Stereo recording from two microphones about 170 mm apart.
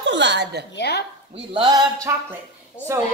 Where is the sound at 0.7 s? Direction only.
70° left (ahead or behind).